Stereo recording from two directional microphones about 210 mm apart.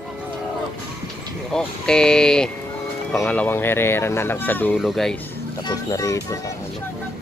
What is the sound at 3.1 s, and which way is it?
Speech, 5° left (ahead or behind).